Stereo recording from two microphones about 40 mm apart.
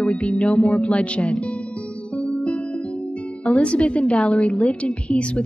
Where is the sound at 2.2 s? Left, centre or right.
Left.